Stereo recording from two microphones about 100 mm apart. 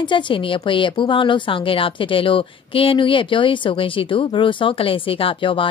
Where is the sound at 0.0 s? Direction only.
55° left (ahead or behind).